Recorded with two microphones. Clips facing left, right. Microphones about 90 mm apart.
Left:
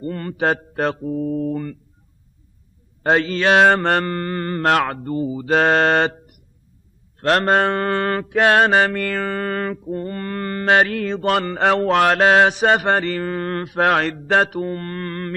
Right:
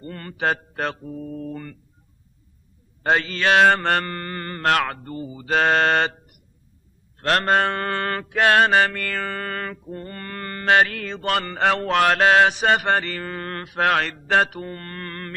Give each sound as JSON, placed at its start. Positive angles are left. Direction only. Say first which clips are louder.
{"t": 0.0, "sound": "mantra", "louder": "left 4 dB", "side_deg": 15}
{"t": 3.0, "sound": "mantra", "louder": "left 3 dB", "side_deg": 15}
{"t": 7.2, "sound": "mantra", "louder": "left 3 dB", "side_deg": 10}